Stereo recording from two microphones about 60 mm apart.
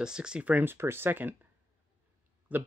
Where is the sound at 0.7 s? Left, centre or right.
Right.